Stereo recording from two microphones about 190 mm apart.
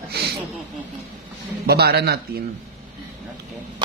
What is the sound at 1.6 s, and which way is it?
Speech, 55° right (ahead or behind).